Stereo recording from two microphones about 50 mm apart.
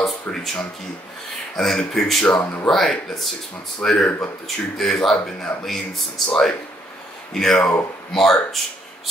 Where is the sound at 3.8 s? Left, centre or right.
Centre.